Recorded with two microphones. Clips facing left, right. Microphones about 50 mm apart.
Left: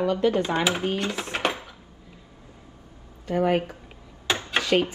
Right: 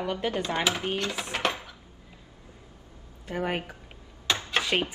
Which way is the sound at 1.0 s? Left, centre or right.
Centre.